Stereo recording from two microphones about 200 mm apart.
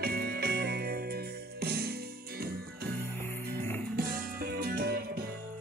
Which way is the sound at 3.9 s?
45° right (ahead or behind).